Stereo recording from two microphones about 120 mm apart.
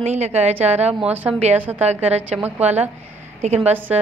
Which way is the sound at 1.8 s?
60° right (ahead or behind).